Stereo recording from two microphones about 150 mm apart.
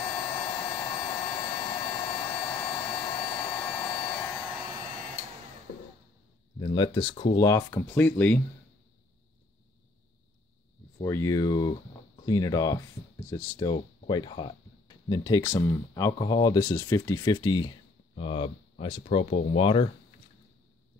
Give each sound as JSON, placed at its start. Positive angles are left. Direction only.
{"t": 0.0, "sound": "vacuum cleaner", "side_deg": 20}
{"t": 3.9, "sound": "hair dryer", "side_deg": 25}
{"t": 6.6, "sound": "speech", "side_deg": 30}
{"t": 11.0, "sound": "speech", "side_deg": 20}